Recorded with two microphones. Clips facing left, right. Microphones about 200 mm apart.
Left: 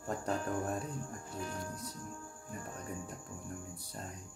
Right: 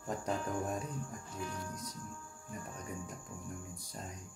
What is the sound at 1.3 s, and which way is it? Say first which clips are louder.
Speech: left 1 dB; 40° left (ahead or behind).